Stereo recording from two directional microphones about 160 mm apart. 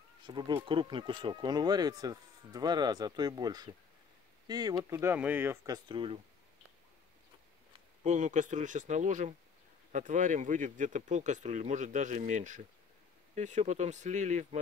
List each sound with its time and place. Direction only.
0.3 s speech: 30° right (ahead or behind)
5.9 s speech: 35° right (ahead or behind)
8.0 s speech: 50° right (ahead or behind)